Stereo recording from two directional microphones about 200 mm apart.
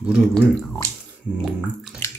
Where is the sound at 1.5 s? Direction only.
5° left (ahead or behind).